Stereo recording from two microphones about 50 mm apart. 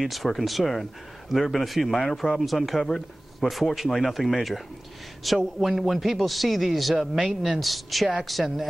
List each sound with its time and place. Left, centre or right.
0.0 s speech: centre
2.0 s speech: centre
2.4 s speech: centre